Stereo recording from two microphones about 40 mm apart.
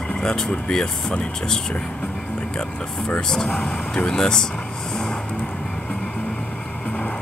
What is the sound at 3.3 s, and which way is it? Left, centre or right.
Speech, centre.